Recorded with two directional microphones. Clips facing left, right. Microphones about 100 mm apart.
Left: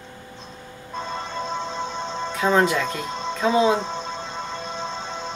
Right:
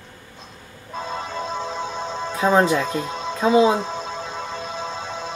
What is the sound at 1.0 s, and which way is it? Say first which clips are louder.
Music: right 1 dB; 5° right (ahead or behind).